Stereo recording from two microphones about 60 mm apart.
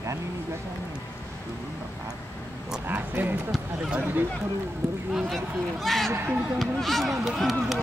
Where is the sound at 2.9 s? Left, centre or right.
Right.